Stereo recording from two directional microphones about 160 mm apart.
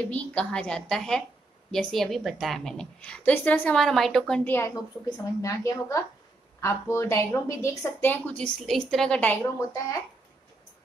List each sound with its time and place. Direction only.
0.1 s a woman's voice: 10° left (ahead or behind)
4.5 s a woman's voice: 15° left (ahead or behind)